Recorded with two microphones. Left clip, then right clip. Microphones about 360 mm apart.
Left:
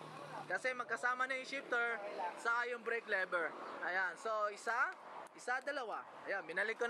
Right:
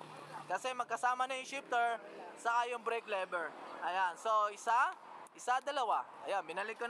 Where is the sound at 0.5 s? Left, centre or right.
Centre.